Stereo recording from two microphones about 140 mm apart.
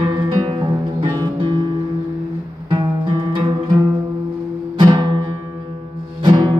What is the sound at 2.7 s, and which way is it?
Guitar, 35° right (ahead or behind).